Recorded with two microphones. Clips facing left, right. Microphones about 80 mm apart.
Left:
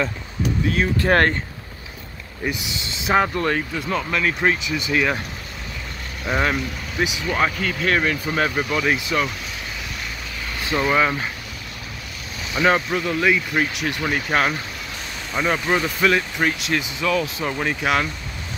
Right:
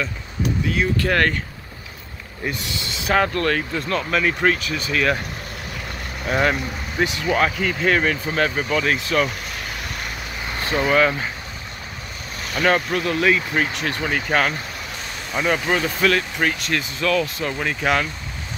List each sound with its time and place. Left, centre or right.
0.9 s speech: left
2.4 s speech: centre
2.8 s speech: left
3.2 s speech: centre
6.2 s speech: centre
8.4 s speech: centre
10.9 s speech: centre
12.5 s speech: centre
17.6 s speech: centre